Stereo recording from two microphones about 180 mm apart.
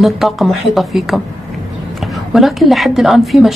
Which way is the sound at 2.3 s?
Centre (ahead or behind).